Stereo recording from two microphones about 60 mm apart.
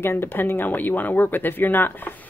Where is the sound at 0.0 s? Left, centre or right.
Left.